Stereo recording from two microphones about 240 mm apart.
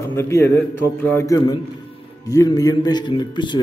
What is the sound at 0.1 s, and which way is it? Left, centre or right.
A man's voice, centre.